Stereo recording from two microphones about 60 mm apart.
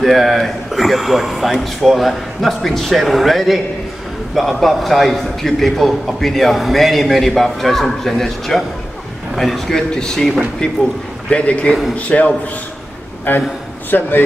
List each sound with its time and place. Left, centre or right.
0.0 s a man's voice: centre
11.2 s a man's voice: centre
13.3 s speech: left